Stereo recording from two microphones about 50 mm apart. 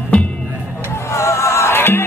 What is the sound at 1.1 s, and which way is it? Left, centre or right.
Music, left.